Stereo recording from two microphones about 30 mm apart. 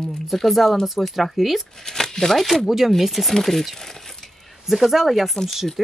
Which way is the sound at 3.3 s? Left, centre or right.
Centre.